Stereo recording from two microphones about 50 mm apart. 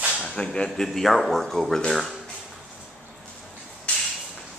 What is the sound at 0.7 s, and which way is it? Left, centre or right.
Speech, centre.